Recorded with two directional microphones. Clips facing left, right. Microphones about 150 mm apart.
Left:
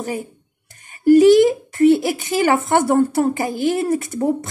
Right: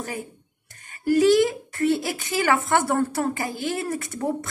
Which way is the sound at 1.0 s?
20° left (ahead or behind).